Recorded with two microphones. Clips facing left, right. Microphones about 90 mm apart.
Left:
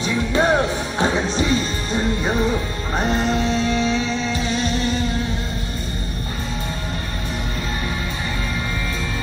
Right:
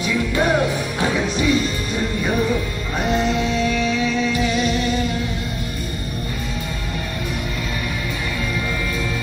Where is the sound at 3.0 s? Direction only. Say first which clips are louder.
Right 1 dB; 35° left (ahead or behind).